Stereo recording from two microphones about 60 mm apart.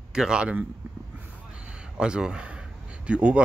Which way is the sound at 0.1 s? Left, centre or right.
Centre.